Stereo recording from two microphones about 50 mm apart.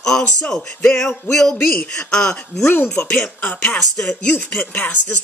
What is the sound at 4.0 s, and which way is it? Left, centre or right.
Music, centre.